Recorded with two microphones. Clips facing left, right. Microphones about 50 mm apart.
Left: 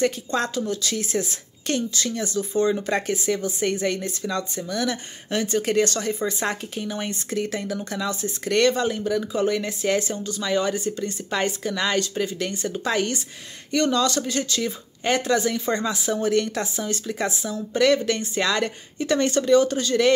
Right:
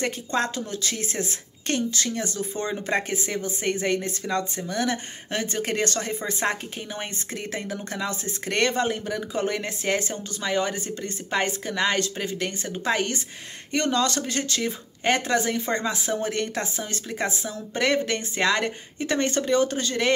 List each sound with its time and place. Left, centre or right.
0.0 s speech: right